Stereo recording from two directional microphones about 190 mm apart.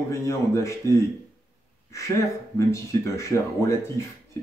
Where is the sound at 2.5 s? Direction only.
15° left (ahead or behind).